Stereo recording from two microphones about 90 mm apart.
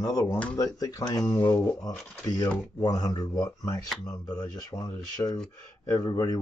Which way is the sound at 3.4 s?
35° left (ahead or behind).